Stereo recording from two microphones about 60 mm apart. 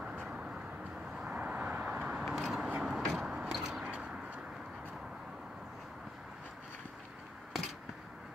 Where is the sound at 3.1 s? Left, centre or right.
Centre.